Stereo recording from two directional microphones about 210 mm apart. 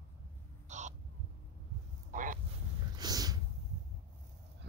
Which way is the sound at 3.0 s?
20° right (ahead or behind).